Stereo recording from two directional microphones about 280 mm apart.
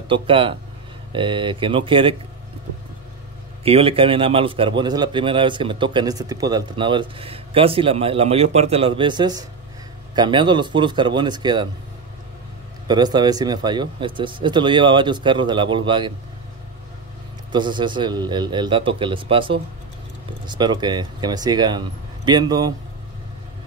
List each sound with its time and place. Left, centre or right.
0.1 s a man's voice: centre
3.6 s a man's voice: centre
12.8 s speech: centre
17.5 s speech: centre